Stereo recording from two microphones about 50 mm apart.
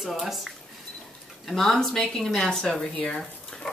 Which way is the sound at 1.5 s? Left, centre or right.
Centre.